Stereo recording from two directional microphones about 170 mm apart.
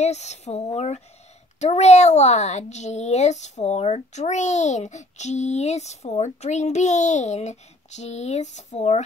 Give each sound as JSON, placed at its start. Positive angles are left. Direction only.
{"t": 0.0, "sound": "a child's voice", "side_deg": 40}